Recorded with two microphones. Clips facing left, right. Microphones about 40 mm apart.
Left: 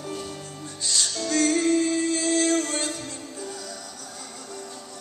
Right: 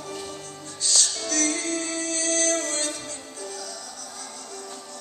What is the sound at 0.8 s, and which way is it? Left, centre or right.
Music, centre.